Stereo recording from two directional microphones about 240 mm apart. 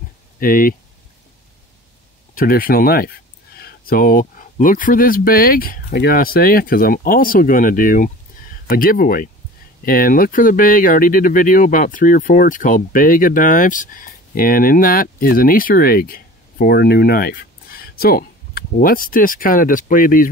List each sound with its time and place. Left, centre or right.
0.4 s speech: left
2.3 s speech: left